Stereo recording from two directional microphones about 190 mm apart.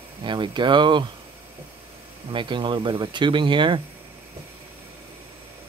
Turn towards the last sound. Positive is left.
turn(degrees=-25)  # may be behind; listen again after turning